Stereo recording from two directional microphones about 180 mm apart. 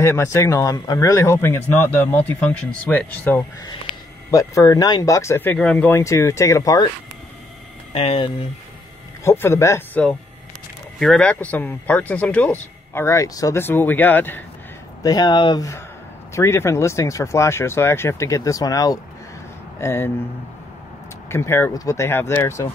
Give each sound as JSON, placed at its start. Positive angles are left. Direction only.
{"t": 0.0, "sound": "speech", "side_deg": 15}
{"t": 7.9, "sound": "speech", "side_deg": 35}
{"t": 9.2, "sound": "speech", "side_deg": 15}
{"t": 15.0, "sound": "speech", "side_deg": 20}
{"t": 21.3, "sound": "speech", "side_deg": 15}